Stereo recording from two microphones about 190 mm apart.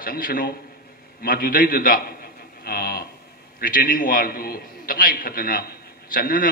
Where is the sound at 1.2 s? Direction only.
50° left (ahead or behind).